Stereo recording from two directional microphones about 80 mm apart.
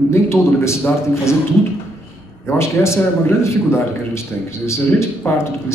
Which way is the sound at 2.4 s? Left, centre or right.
Left.